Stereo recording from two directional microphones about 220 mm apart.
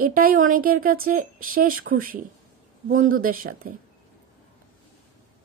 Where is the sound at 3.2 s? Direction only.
40° right (ahead or behind).